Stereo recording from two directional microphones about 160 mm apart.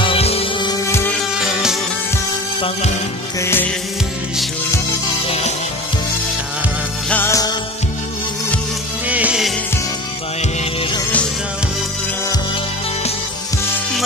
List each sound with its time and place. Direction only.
0.0 s music: 35° left (ahead or behind)
1.3 s music: 5° right (ahead or behind)
3.3 s music: 15° left (ahead or behind)
5.2 s music: 40° left (ahead or behind)
7.1 s music: 15° left (ahead or behind)
9.0 s music: 10° right (ahead or behind)
10.6 s music: 35° left (ahead or behind)